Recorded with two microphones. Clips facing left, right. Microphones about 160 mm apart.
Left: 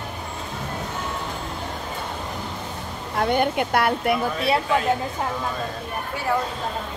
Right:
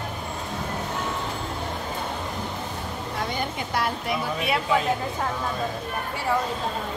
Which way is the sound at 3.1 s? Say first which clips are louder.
Left 10 dB; 60° left (ahead or behind).